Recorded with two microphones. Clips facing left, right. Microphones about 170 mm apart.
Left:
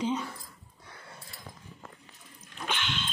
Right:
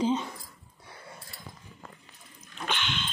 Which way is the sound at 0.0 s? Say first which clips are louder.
Right 3 dB; 25° right (ahead or behind).